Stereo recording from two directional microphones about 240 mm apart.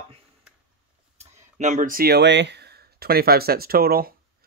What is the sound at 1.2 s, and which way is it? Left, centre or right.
Speech, right.